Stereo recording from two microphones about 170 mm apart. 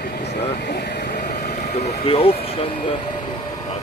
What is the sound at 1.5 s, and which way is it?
Speech, 45° left (ahead or behind).